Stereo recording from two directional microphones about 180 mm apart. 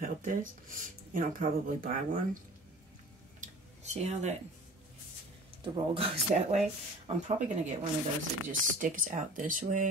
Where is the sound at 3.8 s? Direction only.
40° right (ahead or behind).